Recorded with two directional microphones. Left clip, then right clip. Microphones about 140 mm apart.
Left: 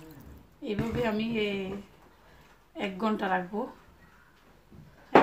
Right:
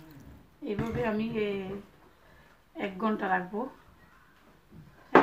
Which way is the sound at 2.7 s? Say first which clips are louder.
Left 1 dB; 10° left (ahead or behind).